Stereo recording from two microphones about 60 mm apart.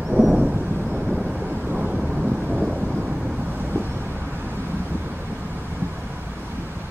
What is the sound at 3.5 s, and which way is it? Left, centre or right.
Vehicle, right.